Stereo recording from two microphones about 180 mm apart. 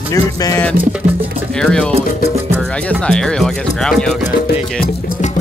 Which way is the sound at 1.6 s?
5° left (ahead or behind).